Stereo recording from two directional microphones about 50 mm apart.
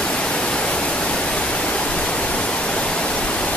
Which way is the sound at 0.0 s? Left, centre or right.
Centre.